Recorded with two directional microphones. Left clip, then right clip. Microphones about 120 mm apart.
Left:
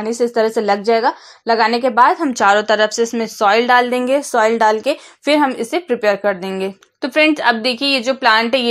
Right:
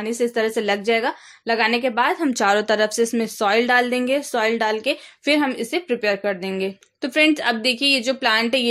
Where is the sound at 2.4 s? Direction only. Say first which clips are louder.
Left 6 dB; 45° right (ahead or behind).